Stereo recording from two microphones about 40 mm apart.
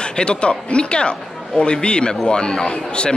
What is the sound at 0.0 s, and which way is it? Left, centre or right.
A man's voice, left.